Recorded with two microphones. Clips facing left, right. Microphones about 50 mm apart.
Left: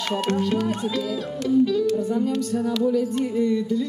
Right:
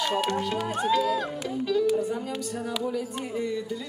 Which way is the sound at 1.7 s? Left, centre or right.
Centre.